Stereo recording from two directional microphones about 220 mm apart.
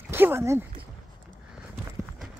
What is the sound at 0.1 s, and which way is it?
Speech, 10° right (ahead or behind).